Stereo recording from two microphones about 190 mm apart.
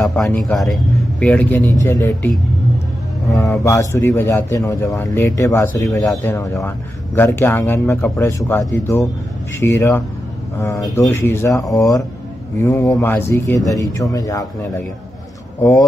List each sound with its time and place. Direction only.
0.0 s a man's voice: 5° left (ahead or behind)
3.3 s a man's voice: 15° left (ahead or behind)